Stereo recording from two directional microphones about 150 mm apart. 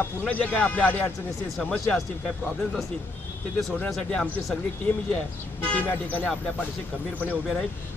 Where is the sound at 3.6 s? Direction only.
5° left (ahead or behind).